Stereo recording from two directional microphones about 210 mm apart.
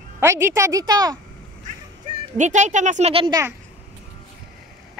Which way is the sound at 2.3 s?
35° right (ahead or behind).